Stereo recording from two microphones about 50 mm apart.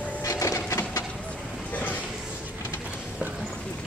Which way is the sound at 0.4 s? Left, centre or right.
Left.